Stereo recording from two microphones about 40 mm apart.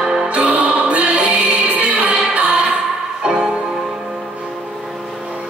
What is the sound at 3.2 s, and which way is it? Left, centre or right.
Music, centre.